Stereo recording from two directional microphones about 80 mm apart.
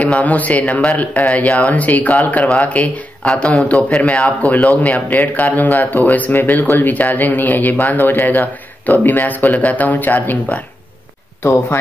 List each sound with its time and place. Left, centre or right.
0.0 s a man's voice: centre